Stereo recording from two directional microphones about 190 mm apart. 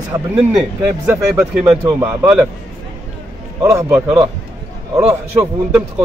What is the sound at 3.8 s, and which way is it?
Speech, 15° right (ahead or behind).